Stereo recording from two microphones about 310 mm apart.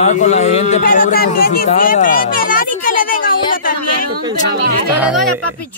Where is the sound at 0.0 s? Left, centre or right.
Left.